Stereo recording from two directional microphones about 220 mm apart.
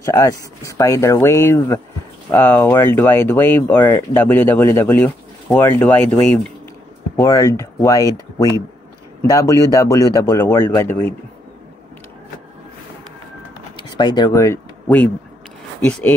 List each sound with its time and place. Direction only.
0.0 s speech: 15° left (ahead or behind)
13.7 s speech: 20° left (ahead or behind)